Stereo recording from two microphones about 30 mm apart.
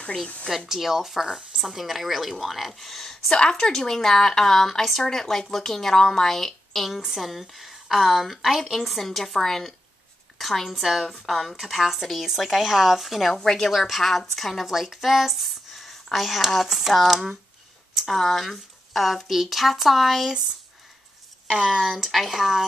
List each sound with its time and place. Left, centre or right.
0.7 s speech: centre
3.3 s speech: left
3.5 s a woman's voice: centre
10.8 s speech: centre
13.3 s a woman's voice: centre
13.7 s speech: centre
14.7 s speech: centre
17.9 s a sound: centre
18.2 s speech: centre
21.5 s speech: right
21.7 s speech: centre